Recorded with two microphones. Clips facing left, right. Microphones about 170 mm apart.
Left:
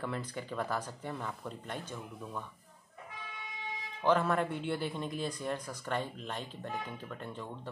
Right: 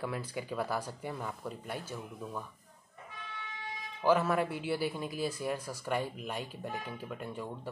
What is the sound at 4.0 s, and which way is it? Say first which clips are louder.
Speech: right 1 dB; 5° right (ahead or behind).